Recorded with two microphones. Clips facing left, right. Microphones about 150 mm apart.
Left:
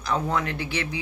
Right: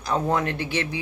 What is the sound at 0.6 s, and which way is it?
Speech, 15° left (ahead or behind).